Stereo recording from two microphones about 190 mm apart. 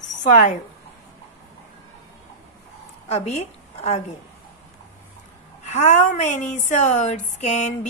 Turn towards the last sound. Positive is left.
turn(degrees=35)  # may be behind; listen again after turning